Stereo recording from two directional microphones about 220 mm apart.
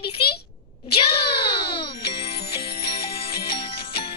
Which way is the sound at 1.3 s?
25° left (ahead or behind).